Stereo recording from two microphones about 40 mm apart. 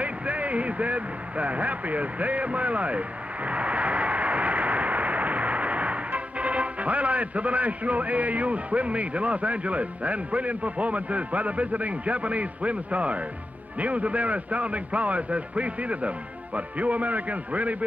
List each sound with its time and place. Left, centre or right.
0.0 s a man's voice: right